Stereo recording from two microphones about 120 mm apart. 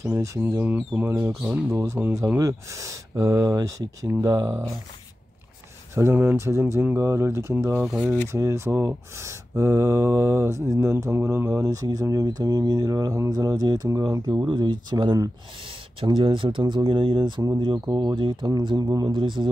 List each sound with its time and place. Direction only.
0.0 s speech: 25° right (ahead or behind)
0.6 s speech: 15° right (ahead or behind)
1.7 s speech: 25° right (ahead or behind)
5.9 s speech: 20° right (ahead or behind)
7.8 s speech: 5° right (ahead or behind)
8.3 s speech: 20° right (ahead or behind)
14.4 s speech: 40° right (ahead or behind)